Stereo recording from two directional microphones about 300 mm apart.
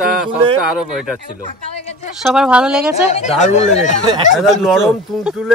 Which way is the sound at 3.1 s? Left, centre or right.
Left.